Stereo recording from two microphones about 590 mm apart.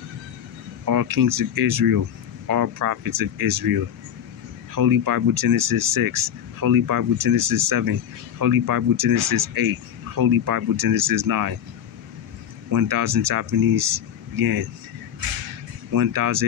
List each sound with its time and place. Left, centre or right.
0.8 s speech: right
12.7 s speech: right
15.9 s speech: right